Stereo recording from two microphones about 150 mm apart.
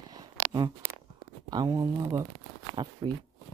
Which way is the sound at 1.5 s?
25° right (ahead or behind).